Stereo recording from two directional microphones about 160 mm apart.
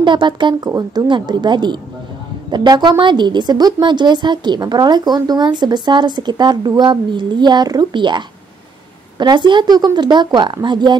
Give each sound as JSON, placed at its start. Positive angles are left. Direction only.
{"t": 0.0, "sound": "a woman's voice", "side_deg": -30}
{"t": 9.2, "sound": "a woman's voice", "side_deg": -30}